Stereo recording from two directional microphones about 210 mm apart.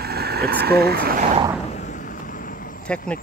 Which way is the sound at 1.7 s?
35° left (ahead or behind).